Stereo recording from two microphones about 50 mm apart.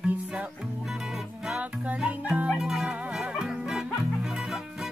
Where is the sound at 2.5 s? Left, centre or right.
Centre.